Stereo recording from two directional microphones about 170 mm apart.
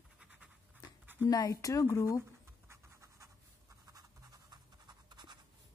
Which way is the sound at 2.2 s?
15° right (ahead or behind).